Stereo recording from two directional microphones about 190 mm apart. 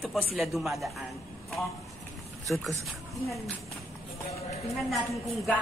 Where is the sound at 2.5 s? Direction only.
Centre (ahead or behind).